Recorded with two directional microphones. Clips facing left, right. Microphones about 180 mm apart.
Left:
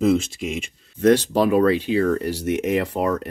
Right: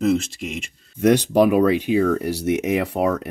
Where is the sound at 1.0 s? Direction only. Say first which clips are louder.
Right 1 dB; 15° right (ahead or behind).